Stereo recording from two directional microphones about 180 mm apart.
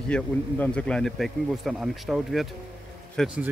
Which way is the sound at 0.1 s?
5° left (ahead or behind).